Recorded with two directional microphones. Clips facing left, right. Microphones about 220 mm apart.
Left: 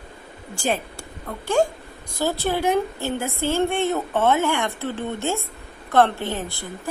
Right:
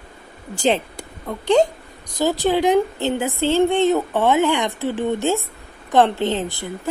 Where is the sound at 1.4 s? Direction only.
20° right (ahead or behind).